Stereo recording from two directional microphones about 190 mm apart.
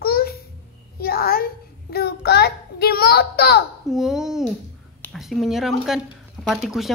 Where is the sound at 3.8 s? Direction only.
Centre (ahead or behind).